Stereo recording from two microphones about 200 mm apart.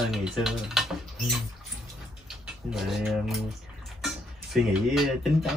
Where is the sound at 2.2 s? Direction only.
Centre (ahead or behind).